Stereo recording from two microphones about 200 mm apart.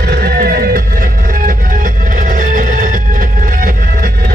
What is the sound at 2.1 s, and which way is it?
Music, 40° right (ahead or behind).